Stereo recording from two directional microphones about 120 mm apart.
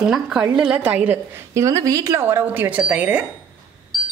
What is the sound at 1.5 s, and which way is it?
Speech, 30° right (ahead or behind).